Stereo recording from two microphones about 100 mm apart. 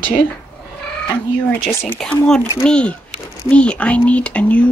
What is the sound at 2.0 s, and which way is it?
Speech, 5° left (ahead or behind).